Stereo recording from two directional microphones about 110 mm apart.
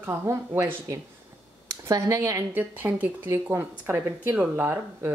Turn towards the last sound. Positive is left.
turn(degrees=-20)  # may be behind; listen again after turning